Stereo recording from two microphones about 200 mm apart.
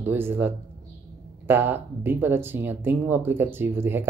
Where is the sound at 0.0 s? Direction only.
10° right (ahead or behind).